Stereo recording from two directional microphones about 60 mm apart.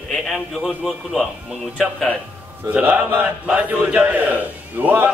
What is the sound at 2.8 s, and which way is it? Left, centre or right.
A man's voice, right.